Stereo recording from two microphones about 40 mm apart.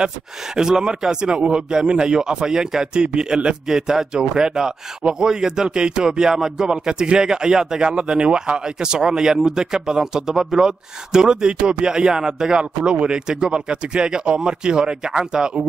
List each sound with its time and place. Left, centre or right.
0.6 s speech: centre